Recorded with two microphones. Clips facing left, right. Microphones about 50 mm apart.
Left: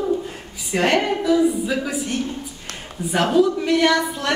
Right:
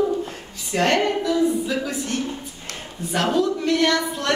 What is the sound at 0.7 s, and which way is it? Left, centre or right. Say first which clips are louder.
A woman's voice: left 1 dB; centre.